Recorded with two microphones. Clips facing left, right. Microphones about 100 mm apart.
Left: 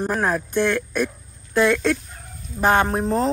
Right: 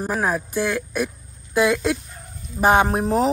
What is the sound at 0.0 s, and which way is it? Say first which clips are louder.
A woman's voice: left 1 dB; 5° right (ahead or behind).